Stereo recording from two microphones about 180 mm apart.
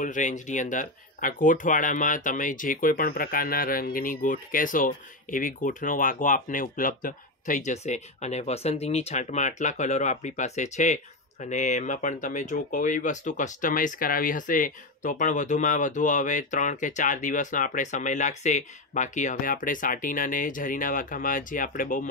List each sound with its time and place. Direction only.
0.0 s speech: 45° left (ahead or behind)